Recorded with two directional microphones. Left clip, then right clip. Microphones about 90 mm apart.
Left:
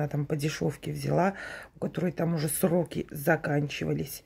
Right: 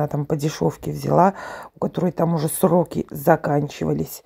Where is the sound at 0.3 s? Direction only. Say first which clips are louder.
Right 8 dB; 45° right (ahead or behind).